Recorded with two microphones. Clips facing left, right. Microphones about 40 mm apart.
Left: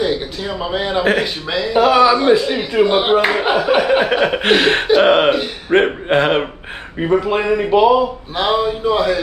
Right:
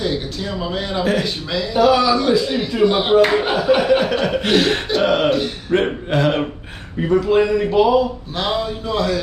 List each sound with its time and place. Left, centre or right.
0.0 s a man's voice: centre